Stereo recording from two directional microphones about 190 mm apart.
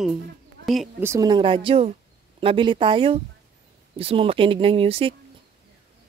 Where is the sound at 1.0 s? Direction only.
20° right (ahead or behind).